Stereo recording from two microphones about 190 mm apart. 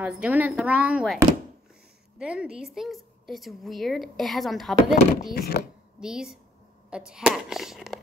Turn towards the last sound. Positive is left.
turn(degrees=0)  # may be behind; listen again after turning